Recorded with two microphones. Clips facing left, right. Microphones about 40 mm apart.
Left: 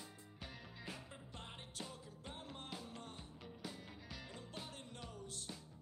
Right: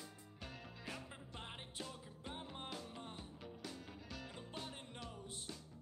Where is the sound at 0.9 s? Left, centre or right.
Centre.